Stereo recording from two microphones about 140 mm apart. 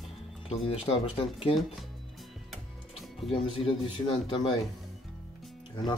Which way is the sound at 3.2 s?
Centre (ahead or behind).